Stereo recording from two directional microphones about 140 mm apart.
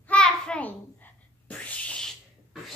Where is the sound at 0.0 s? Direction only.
5° left (ahead or behind).